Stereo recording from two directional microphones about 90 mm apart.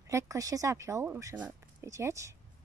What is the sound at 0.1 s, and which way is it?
Speech, 35° right (ahead or behind).